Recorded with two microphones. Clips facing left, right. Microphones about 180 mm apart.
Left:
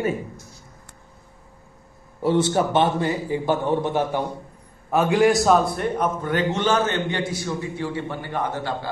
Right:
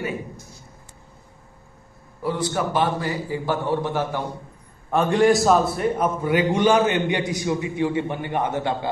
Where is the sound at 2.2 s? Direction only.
25° left (ahead or behind).